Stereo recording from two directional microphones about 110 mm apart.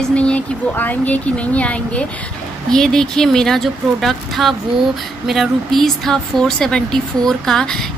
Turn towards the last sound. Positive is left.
turn(degrees=5)  # may be behind; listen again after turning